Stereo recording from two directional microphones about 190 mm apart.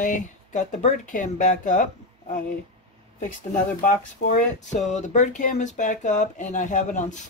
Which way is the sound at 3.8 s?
40° left (ahead or behind).